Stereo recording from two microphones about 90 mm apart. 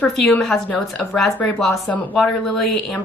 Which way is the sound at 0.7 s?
5° left (ahead or behind).